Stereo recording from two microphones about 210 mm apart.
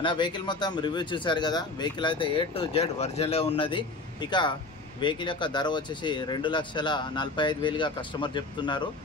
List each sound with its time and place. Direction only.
0.0 s speech: 20° left (ahead or behind)